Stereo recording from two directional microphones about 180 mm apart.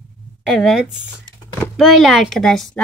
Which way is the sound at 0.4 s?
Centre (ahead or behind).